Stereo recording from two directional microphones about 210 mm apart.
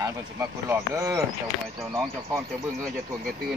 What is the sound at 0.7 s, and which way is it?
Speech, 15° right (ahead or behind).